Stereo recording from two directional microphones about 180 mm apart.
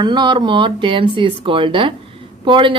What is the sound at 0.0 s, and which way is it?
Speech, 25° right (ahead or behind).